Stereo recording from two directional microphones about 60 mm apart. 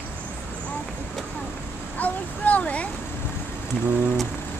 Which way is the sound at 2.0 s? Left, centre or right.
Left.